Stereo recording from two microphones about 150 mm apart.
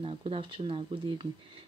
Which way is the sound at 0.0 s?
40° right (ahead or behind).